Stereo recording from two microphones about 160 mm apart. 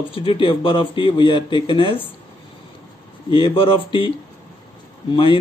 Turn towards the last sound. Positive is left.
turn(degrees=30)  # may be behind; listen again after turning